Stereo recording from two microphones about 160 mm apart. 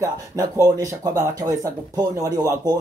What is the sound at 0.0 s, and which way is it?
Speech, 20° right (ahead or behind).